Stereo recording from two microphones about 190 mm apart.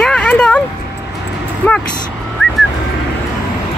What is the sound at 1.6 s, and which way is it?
Vehicle, 5° left (ahead or behind).